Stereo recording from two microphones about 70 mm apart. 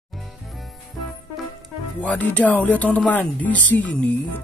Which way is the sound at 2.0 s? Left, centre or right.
Left.